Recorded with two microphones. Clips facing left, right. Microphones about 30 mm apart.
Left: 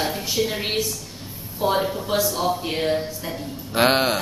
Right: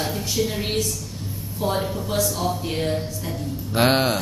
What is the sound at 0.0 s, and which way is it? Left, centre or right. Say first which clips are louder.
A woman's voice: left 1 dB; centre.